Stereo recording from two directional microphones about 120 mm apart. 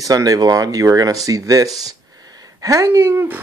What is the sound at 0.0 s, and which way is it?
A woman's voice, 30° right (ahead or behind).